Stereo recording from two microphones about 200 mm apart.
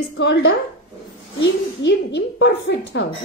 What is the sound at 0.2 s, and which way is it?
Speech, 60° left (ahead or behind).